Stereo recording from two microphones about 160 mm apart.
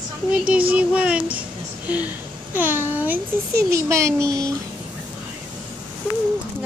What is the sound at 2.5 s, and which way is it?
A child's voice, 10° right (ahead or behind).